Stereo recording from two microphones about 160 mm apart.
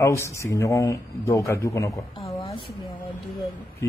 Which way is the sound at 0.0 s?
20° left (ahead or behind).